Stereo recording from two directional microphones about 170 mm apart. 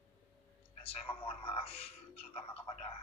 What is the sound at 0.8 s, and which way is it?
A man's voice, 35° left (ahead or behind).